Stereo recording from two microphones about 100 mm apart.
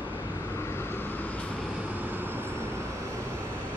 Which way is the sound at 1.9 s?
20° right (ahead or behind).